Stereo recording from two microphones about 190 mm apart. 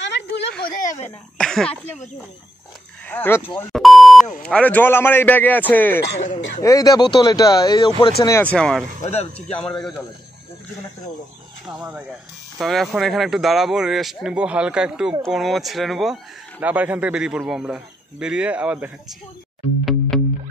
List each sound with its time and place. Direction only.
0.0 s a sound: 70° left (ahead or behind)
1.4 s throat clearing: centre (ahead or behind)
3.1 s a man's voice: 10° left (ahead or behind)
3.7 s a man's voice: centre (ahead or behind)
6.1 s speech: 40° left (ahead or behind)
6.6 s a man's voice: 20° left (ahead or behind)
9.0 s speech: 35° left (ahead or behind)
12.5 s a man's voice: centre (ahead or behind)
19.8 s music: centre (ahead or behind)